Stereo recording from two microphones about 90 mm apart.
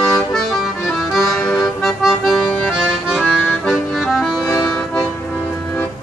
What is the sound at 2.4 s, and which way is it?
Accordion, 15° left (ahead or behind).